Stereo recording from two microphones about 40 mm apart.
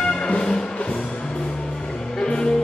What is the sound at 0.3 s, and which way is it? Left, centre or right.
Music, left.